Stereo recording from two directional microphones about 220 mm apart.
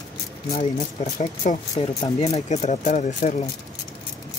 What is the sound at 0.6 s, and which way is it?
Speech, 35° left (ahead or behind).